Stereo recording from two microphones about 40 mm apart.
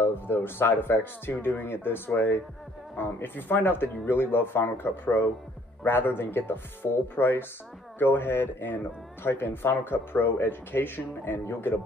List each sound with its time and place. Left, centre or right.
0.0 s a man's voice: left